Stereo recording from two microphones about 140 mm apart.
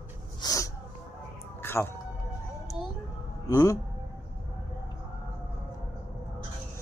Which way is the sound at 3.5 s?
20° left (ahead or behind).